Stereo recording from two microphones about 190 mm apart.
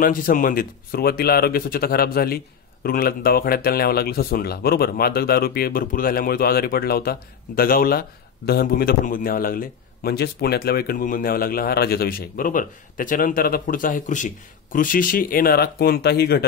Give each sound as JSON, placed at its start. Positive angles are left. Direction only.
{"t": 0.0, "sound": "speech", "side_deg": 45}